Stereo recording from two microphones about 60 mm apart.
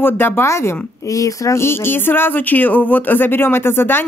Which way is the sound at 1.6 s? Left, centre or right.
Left.